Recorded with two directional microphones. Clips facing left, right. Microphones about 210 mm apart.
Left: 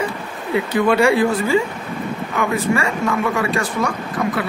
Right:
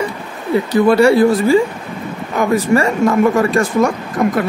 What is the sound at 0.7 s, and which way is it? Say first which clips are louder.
Speech: right 5 dB; 35° right (ahead or behind).